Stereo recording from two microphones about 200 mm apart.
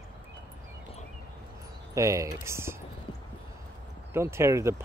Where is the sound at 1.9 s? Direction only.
15° right (ahead or behind).